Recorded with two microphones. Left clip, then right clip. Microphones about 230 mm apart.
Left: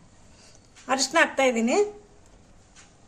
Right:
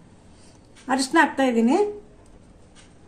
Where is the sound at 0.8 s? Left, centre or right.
Left.